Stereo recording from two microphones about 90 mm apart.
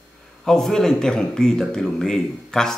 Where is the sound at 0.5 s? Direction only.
5° left (ahead or behind).